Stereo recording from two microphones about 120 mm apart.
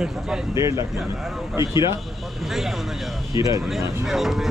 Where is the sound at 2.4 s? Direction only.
Centre (ahead or behind).